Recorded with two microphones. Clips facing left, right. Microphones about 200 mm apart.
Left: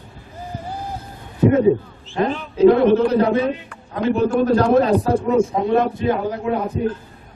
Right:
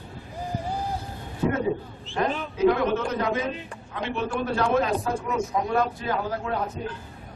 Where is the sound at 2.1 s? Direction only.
30° left (ahead or behind).